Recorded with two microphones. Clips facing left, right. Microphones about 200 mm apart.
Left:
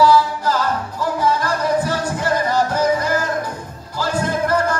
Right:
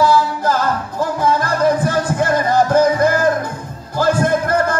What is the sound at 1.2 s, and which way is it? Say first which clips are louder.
Music: right 5 dB; 50° right (ahead or behind).